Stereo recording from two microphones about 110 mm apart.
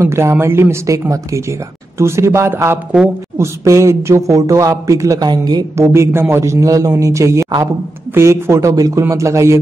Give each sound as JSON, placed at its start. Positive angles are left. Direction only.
{"t": 0.0, "sound": "speech", "side_deg": -25}
{"t": 5.8, "sound": "speech", "side_deg": -25}